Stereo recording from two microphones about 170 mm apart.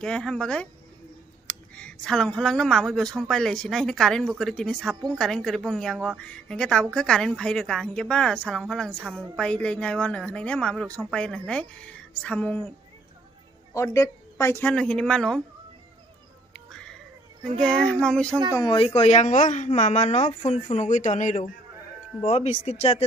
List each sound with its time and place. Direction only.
0.0 s a woman's voice: 5° left (ahead or behind)
13.7 s a woman's voice: 15° left (ahead or behind)
16.5 s music: 5° left (ahead or behind)
17.6 s speech: 5° left (ahead or behind)
18.5 s speech: 25° left (ahead or behind)